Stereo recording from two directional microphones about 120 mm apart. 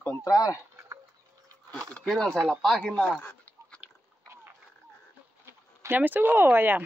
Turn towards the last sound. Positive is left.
turn(degrees=-15)  # may be behind; listen again after turning